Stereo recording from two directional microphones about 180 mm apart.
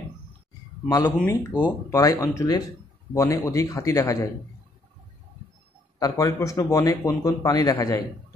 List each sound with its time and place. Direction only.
0.8 s speech: 15° left (ahead or behind)
5.9 s speech: 20° left (ahead or behind)